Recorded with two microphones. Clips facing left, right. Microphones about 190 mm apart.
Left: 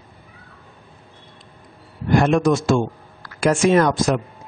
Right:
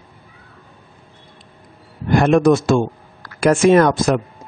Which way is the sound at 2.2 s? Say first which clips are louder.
Right 4 dB; 55° right (ahead or behind).